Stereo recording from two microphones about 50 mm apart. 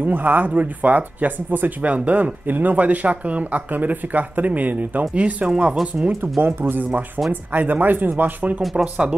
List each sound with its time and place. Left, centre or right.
0.0 s speech: right; by 6.1 s centre
6.4 s speech: right
8.7 s speech: centre